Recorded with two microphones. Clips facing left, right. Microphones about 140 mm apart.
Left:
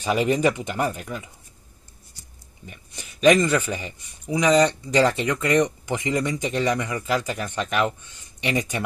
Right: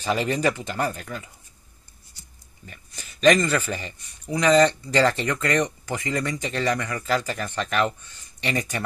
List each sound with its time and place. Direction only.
0.0 s speech: 15° left (ahead or behind)
2.6 s speech: 15° left (ahead or behind)
5.4 s speech: 20° left (ahead or behind)